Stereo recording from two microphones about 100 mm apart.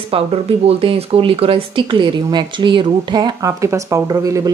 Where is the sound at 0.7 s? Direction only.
75° right (ahead or behind).